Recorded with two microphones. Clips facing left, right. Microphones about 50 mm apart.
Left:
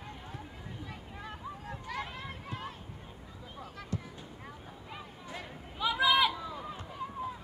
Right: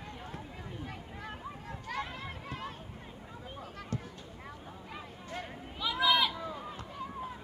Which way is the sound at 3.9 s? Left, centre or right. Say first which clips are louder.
Even; right.